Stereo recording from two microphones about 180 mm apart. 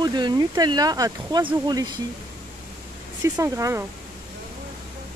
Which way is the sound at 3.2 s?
15° right (ahead or behind).